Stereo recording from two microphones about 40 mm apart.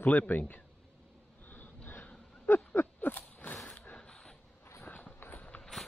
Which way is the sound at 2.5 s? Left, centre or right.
Left.